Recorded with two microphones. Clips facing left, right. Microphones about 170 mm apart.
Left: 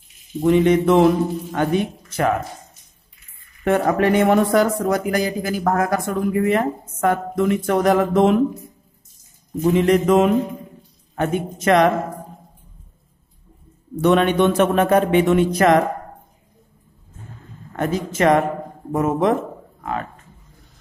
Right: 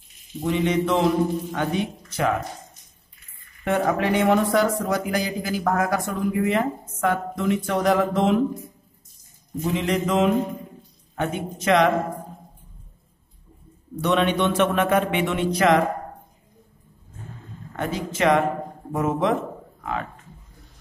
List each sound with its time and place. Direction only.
0.4 s a man's voice: 55° left (ahead or behind)
3.6 s a man's voice: 50° left (ahead or behind)
9.6 s a man's voice: 50° left (ahead or behind)
14.0 s a man's voice: 50° left (ahead or behind)
17.7 s a man's voice: 45° left (ahead or behind)